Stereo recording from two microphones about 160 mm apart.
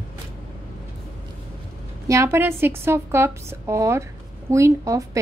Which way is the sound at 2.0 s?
20° right (ahead or behind).